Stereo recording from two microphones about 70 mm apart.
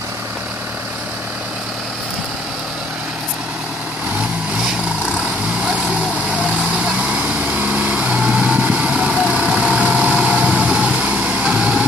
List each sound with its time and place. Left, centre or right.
6.3 s vehicle: centre